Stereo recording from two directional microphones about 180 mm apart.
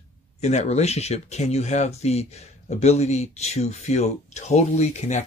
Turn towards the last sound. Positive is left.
turn(degrees=40)  # may be behind; listen again after turning